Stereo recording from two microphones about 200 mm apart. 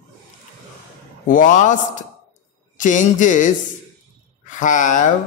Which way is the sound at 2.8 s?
40° left (ahead or behind).